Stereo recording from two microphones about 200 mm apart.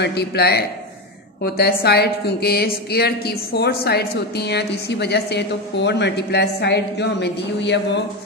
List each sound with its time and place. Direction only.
0.0 s a woman's voice: 55° left (ahead or behind)